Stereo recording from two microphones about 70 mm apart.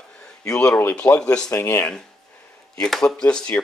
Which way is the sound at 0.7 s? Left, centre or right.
Left.